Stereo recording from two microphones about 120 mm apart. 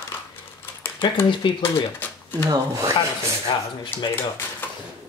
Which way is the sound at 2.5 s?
30° right (ahead or behind).